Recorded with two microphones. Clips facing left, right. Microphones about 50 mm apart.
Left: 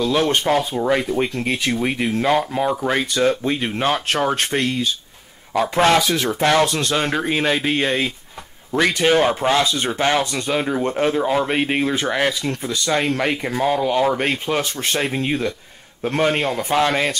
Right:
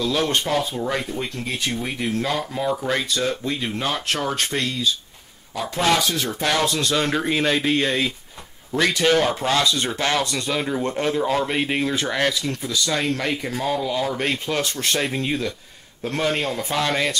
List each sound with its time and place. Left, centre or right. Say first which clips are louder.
0.3 s speech: left 4 dB; left
1.1 s a man's voice: left 7 dB; left
7.0 s speech: left 1 dB; centre
12.4 s speech: left 3 dB; left